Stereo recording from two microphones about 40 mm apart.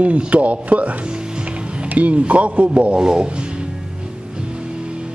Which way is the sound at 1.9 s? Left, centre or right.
Right.